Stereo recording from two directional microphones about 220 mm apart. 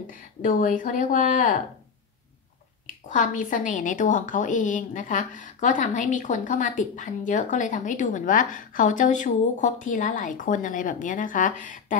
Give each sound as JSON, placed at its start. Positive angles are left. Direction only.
{"t": 0.0, "sound": "a woman's voice", "side_deg": 40}
{"t": 3.1, "sound": "a woman's voice", "side_deg": 35}